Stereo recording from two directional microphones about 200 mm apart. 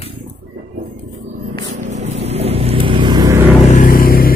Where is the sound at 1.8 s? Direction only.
35° right (ahead or behind); by 3.4 s 20° right (ahead or behind).